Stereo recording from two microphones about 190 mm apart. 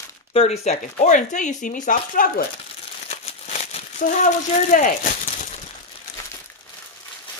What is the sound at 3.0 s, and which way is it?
Crumpling, 35° left (ahead or behind).